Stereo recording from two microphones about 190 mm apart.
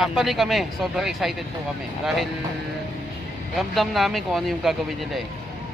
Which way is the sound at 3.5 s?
Centre (ahead or behind).